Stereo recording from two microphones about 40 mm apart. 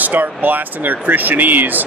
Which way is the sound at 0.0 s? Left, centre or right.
Right.